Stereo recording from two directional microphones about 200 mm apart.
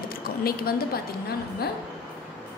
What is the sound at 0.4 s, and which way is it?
Speech, 50° left (ahead or behind).